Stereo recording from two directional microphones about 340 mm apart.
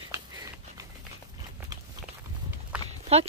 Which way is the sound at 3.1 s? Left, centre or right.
Centre.